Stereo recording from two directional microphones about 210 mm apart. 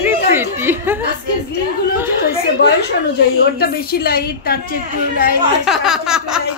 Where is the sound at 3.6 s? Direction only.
45° left (ahead or behind).